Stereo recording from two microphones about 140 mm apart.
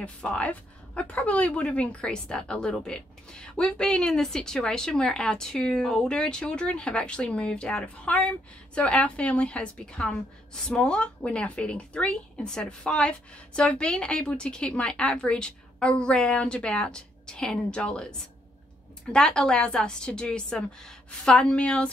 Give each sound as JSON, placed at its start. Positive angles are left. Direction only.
{"t": 0.0, "sound": "a woman's voice", "side_deg": 10}